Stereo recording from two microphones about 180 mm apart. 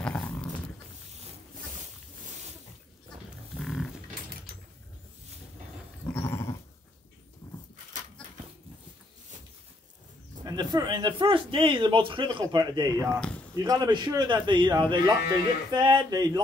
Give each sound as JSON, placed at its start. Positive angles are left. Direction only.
{"t": 0.0, "sound": "dog", "side_deg": 5}
{"t": 3.5, "sound": "pig", "side_deg": 0}
{"t": 6.0, "sound": "dog", "side_deg": 10}
{"t": 10.4, "sound": "speech", "side_deg": -25}
{"t": 13.1, "sound": "speech", "side_deg": 5}
{"t": 13.6, "sound": "speech", "side_deg": -20}